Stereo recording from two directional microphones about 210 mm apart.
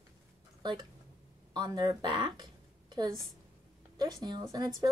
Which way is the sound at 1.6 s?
20° right (ahead or behind).